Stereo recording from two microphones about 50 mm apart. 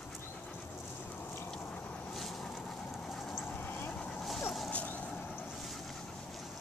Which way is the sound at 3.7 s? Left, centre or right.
Left.